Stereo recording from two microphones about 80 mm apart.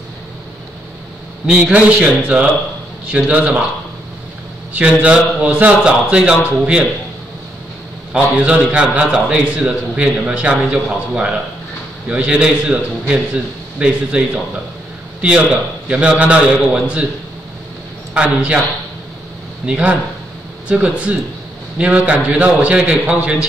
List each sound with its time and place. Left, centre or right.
1.5 s a man's voice: centre
5.0 s a man's voice: centre
8.1 s a man's voice: centre
18.1 s a man's voice: centre
19.6 s a man's voice: centre